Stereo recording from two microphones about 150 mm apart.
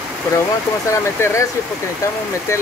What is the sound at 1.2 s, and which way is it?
Speech, 15° left (ahead or behind).